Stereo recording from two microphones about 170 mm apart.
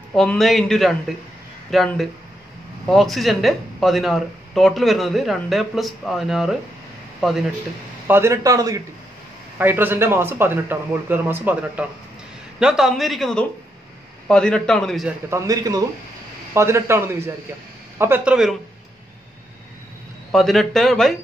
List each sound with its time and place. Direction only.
0.1 s speech: 5° left (ahead or behind)
8.1 s a man's voice: 15° right (ahead or behind); by 15.1 s centre (ahead or behind)
15.2 s a man's voice: 20° right (ahead or behind)
20.2 s speech: centre (ahead or behind)